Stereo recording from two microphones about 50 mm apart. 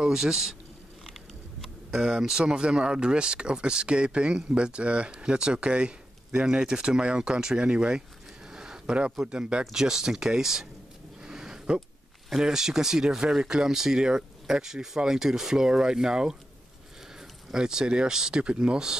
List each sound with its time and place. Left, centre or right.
0.0 s speech: centre
1.9 s speech: centre
8.5 s a sound: centre
8.9 s speech: centre
11.2 s a sound: centre
12.3 s speech: centre